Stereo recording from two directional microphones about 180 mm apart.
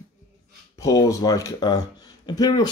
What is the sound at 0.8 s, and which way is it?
Speech, 20° left (ahead or behind).